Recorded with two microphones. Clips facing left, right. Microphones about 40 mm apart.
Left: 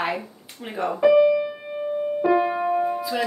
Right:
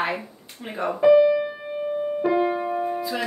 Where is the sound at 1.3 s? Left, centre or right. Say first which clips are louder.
Left 1 dB; centre.